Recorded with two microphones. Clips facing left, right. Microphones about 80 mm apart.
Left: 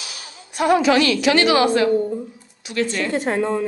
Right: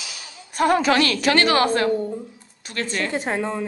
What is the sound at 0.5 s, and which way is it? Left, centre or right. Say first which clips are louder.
A woman's voice: left 2 dB; right.